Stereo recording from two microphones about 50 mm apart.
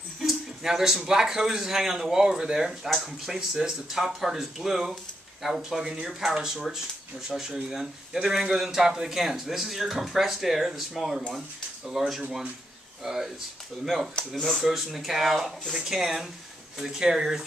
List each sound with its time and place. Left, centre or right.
0.2 s speech: centre